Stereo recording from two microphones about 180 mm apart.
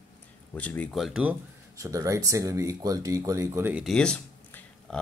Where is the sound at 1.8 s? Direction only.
20° right (ahead or behind).